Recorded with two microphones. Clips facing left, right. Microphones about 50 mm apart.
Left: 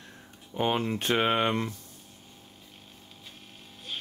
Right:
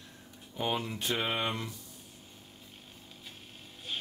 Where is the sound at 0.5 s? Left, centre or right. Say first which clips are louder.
Left 6 dB; left.